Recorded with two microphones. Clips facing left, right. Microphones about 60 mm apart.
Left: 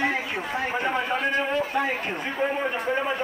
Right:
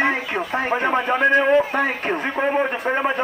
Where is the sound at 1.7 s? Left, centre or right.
Right.